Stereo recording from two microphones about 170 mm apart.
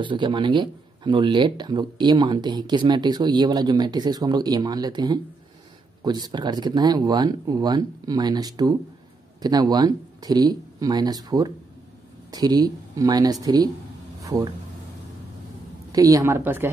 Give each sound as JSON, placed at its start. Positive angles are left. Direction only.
{"t": 0.0, "sound": "speech", "side_deg": -30}
{"t": 15.9, "sound": "a woman's voice", "side_deg": -20}